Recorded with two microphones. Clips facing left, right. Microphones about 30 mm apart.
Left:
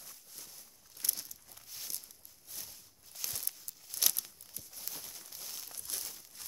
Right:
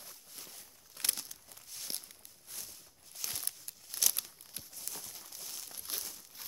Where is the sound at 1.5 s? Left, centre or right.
Centre.